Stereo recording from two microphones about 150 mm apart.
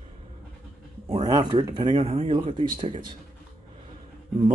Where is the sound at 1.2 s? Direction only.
25° right (ahead or behind).